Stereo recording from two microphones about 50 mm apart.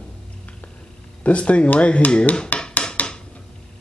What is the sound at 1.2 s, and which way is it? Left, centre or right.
Speech, left.